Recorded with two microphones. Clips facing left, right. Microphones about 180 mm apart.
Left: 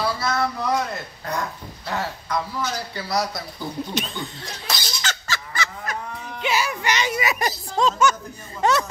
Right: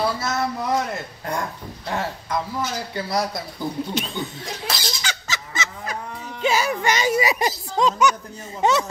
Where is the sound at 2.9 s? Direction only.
25° right (ahead or behind).